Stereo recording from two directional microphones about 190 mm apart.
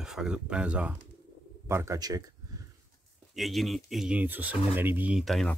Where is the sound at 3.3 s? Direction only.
Centre (ahead or behind).